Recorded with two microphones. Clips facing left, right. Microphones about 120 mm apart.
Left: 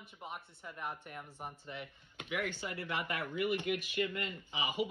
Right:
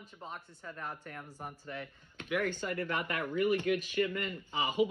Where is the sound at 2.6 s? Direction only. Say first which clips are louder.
Right 4 dB; 50° right (ahead or behind).